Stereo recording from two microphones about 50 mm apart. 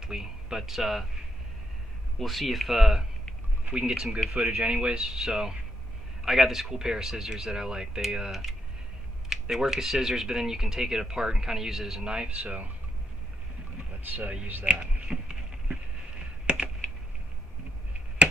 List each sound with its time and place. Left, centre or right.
0.0 s speech: centre
2.1 s speech: centre
3.6 s speech: centre
14.5 s a sound: right